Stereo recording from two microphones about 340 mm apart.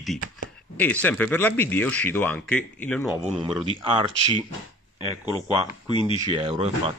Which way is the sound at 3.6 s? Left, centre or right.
Centre.